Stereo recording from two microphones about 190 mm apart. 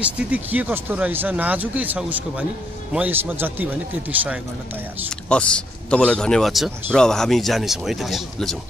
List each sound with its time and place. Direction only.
0.0 s speech: 5° right (ahead or behind)
5.3 s speech: 5° left (ahead or behind)